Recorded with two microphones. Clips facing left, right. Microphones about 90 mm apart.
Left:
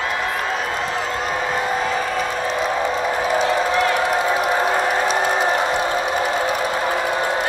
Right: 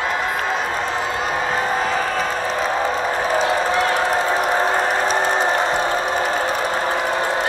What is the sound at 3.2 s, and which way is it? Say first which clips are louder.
Run: even; 40° right (ahead or behind).